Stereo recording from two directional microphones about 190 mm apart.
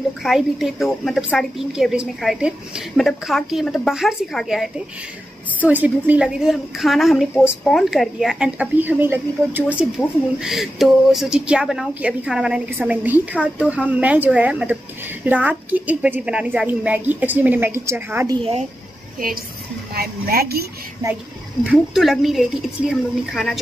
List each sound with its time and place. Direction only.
0.2 s a woman's voice: centre (ahead or behind)
5.7 s a woman's voice: 10° right (ahead or behind); by 18.7 s 30° right (ahead or behind)
19.9 s a woman's voice: 55° right (ahead or behind)
21.6 s a woman's voice: centre (ahead or behind)